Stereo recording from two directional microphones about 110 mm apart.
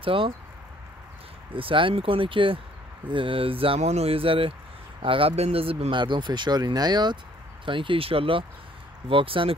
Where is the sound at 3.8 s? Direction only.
75° right (ahead or behind).